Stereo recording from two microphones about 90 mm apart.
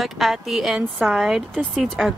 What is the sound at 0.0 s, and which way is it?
Speech, centre (ahead or behind).